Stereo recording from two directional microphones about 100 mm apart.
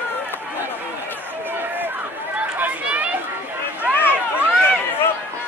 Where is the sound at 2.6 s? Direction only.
15° right (ahead or behind).